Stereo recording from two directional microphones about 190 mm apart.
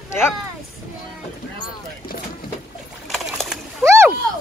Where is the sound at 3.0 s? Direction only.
Centre (ahead or behind).